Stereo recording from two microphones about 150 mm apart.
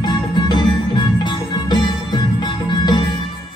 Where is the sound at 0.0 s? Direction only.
30° left (ahead or behind).